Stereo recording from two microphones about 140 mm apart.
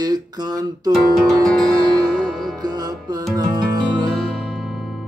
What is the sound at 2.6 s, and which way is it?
Music, 30° right (ahead or behind).